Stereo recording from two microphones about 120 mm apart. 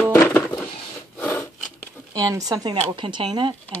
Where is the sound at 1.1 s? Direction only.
20° left (ahead or behind).